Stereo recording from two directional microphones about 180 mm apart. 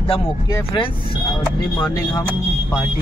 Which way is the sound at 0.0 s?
30° left (ahead or behind).